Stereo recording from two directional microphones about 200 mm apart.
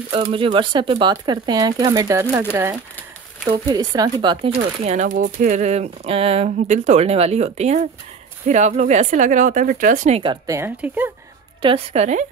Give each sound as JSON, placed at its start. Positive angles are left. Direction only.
{"t": 0.3, "sound": "speech", "side_deg": -25}
{"t": 4.6, "sound": "speech", "side_deg": -35}
{"t": 11.6, "sound": "speech", "side_deg": -30}